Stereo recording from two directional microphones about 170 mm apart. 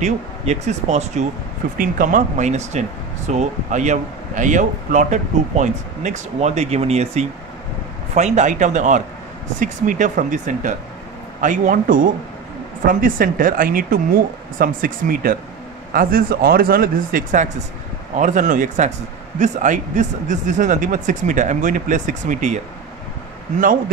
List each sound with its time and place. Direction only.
0.0 s speech: 45° right (ahead or behind)